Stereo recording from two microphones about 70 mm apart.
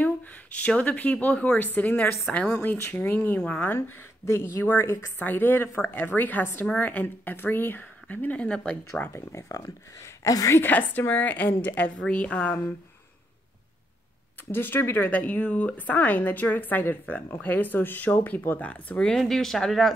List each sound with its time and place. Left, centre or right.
0.0 s speech: left
3.7 s speech: left
9.3 s a woman's voice: left
10.6 s speech: left
14.5 s speech: left; by 19.9 s centre